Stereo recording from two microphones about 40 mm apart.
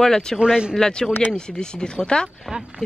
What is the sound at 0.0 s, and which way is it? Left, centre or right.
Speech, centre.